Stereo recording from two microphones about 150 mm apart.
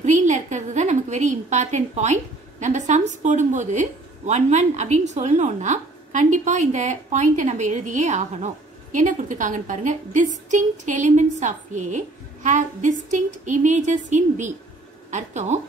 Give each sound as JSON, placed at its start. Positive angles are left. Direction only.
{"t": 0.0, "sound": "a woman's voice", "side_deg": -55}